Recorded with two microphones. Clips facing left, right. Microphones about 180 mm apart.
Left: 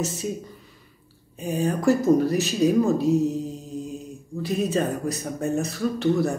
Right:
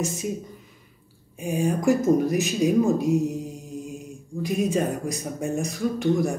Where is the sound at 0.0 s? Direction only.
15° right (ahead or behind).